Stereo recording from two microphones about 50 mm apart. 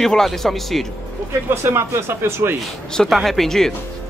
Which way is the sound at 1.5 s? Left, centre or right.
Right.